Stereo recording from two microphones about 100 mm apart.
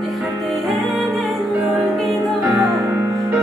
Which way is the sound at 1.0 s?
Centre (ahead or behind).